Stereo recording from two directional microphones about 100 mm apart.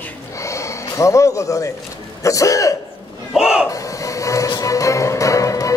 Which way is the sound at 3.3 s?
5° right (ahead or behind).